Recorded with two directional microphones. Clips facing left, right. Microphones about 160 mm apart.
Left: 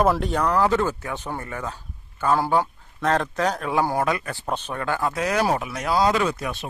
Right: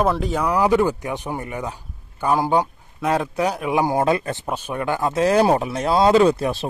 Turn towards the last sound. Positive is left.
turn(degrees=-30)  # may be behind; listen again after turning